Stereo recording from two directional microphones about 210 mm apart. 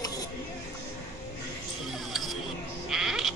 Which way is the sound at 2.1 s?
Centre (ahead or behind).